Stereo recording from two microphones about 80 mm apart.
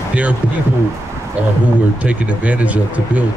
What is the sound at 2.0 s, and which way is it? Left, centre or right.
Speech, centre.